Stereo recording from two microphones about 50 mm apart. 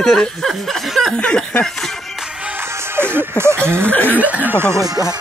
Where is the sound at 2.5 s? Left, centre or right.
Right.